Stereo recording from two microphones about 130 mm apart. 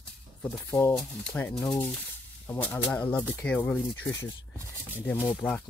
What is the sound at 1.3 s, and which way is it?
Speech, 5° left (ahead or behind).